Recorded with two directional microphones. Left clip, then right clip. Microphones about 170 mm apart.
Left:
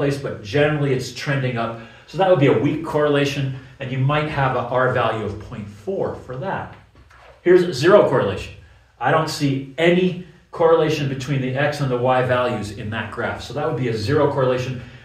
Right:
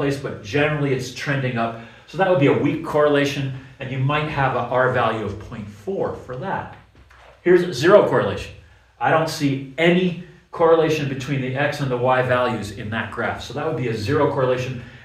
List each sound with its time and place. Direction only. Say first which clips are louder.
0.0 s speech: left 1 dB; 15° right (ahead or behind)